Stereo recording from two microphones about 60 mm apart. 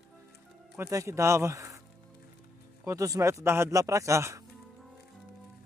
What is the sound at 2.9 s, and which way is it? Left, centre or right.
Speech, right.